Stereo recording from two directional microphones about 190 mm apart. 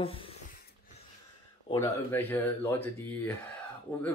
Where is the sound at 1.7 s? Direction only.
15° left (ahead or behind).